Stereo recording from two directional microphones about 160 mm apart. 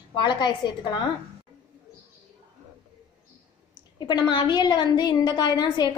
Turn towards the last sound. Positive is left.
turn(degrees=25)  # may be behind; listen again after turning